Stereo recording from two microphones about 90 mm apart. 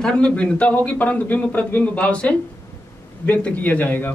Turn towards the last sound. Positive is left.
turn(degrees=20)  # may be behind; listen again after turning